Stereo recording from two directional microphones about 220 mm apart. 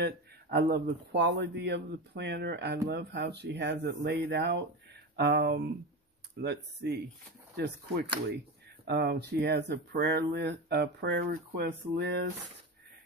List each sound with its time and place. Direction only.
0.0 s speech: 45° right (ahead or behind)